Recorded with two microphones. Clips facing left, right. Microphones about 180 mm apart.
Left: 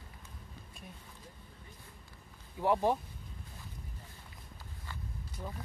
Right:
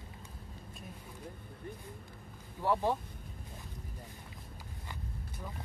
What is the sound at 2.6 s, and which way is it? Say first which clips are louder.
Speech: left 2 dB; 15° left (ahead or behind).